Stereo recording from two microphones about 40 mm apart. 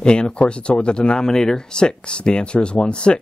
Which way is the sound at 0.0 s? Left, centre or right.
Left.